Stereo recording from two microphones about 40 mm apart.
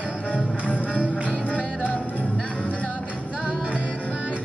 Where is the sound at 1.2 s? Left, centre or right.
Left.